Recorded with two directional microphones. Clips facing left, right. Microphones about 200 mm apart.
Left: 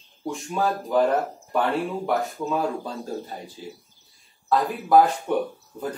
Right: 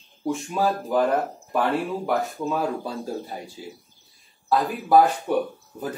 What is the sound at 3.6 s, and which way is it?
Speech, 10° right (ahead or behind).